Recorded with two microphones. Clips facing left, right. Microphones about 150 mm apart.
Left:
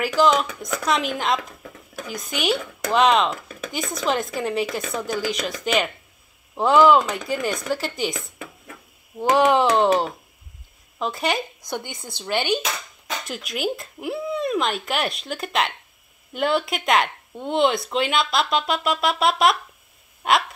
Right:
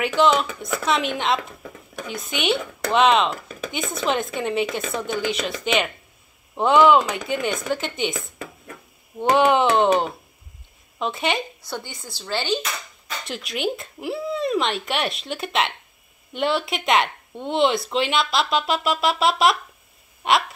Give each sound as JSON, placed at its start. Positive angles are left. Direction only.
{"t": 0.0, "sound": "speech", "side_deg": 0}
{"t": 11.6, "sound": "speech", "side_deg": 15}
{"t": 13.3, "sound": "speech", "side_deg": 0}